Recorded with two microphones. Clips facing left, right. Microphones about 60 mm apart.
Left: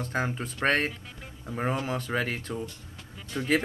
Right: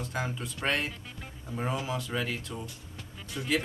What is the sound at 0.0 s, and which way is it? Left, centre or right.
Speech, left.